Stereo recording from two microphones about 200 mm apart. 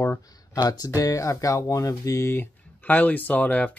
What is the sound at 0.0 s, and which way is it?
Speech, 15° left (ahead or behind).